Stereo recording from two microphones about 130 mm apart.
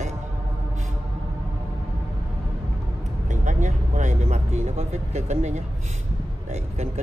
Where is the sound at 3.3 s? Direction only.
70° right (ahead or behind).